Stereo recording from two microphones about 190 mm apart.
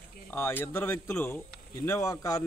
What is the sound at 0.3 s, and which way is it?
Speech, 10° left (ahead or behind).